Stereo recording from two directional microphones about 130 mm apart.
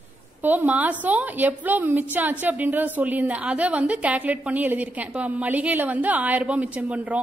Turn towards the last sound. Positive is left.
turn(degrees=-10)  # may be behind; listen again after turning